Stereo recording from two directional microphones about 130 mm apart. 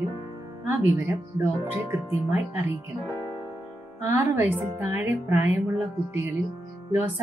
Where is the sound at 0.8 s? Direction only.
10° right (ahead or behind).